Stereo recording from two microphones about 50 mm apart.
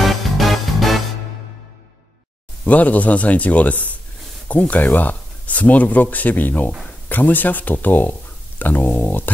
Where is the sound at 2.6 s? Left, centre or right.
Left.